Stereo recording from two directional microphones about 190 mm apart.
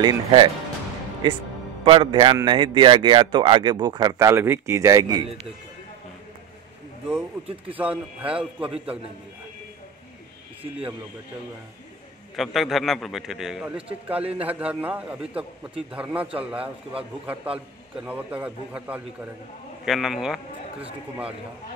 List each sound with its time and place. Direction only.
0.0 s speech: 25° right (ahead or behind)
7.7 s a man's voice: 5° right (ahead or behind)
12.4 s a man's voice: centre (ahead or behind)
17.9 s a man's voice: 5° right (ahead or behind)